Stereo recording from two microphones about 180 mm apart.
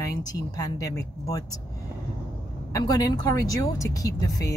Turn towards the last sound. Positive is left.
turn(degrees=20)  # may be behind; listen again after turning